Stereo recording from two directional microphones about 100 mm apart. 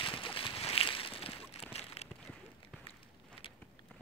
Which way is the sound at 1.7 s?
90° left.